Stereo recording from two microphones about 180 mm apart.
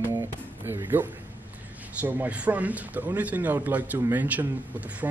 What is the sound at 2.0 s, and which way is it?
A man's voice, 10° right (ahead or behind).